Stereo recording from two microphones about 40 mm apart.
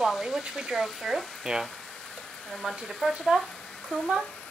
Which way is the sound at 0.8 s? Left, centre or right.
Centre.